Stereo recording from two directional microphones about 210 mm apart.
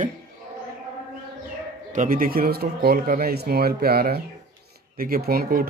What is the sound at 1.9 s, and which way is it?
Speech, 40° right (ahead or behind).